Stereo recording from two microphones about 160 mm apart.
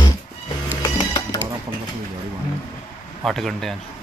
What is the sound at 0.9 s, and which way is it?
Dishes, 25° left (ahead or behind).